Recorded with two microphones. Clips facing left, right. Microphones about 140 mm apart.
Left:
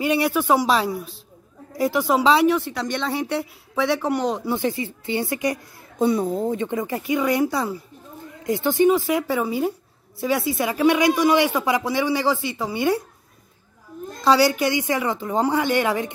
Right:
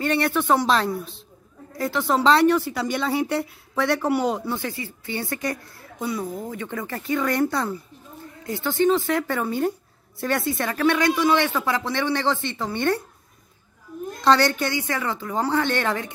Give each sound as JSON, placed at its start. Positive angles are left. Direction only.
{"t": 0.0, "sound": "a man's voice", "side_deg": 10}
{"t": 4.5, "sound": "a man's voice", "side_deg": 20}
{"t": 5.9, "sound": "a man's voice", "side_deg": 25}
{"t": 14.2, "sound": "a man's voice", "side_deg": 5}